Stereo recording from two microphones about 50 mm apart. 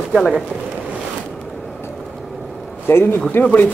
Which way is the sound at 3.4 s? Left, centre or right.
Left.